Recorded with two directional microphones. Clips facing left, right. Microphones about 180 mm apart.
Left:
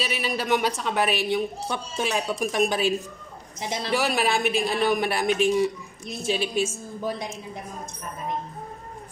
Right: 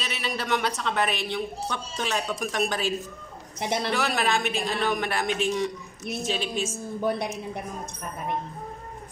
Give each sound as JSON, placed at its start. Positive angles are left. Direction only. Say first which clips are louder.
{"t": 0.0, "sound": "speech", "louder": "left 4 dB", "side_deg": 10}
{"t": 3.5, "sound": "a man's voice", "louder": "right 3 dB", "side_deg": -60}
{"t": 3.9, "sound": "speech", "louder": "left 6 dB", "side_deg": 10}
{"t": 7.0, "sound": "a man's voice", "louder": "right 3 dB", "side_deg": -65}